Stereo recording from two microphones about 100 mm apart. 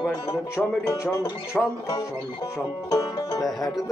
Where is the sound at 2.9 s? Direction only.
40° left (ahead or behind).